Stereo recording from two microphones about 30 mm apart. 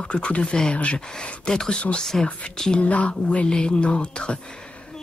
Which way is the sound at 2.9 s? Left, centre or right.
Left.